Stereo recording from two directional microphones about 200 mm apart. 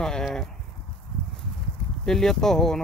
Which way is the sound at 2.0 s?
Centre (ahead or behind).